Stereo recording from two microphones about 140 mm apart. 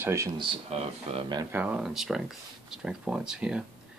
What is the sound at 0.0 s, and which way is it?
Speech, 20° right (ahead or behind).